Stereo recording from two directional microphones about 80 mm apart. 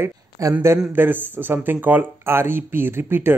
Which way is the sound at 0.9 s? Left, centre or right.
Right.